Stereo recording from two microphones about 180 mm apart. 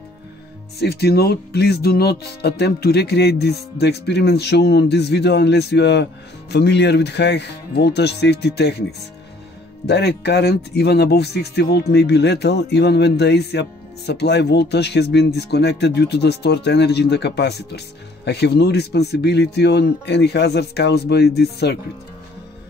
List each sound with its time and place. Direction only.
0.7 s speech: 65° left (ahead or behind)
9.8 s speech: 65° left (ahead or behind)